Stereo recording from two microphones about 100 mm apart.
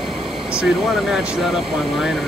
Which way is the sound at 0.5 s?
5° right (ahead or behind).